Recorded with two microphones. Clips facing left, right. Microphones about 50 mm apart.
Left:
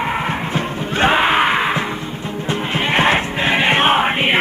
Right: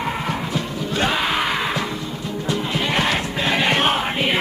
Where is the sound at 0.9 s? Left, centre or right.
Left.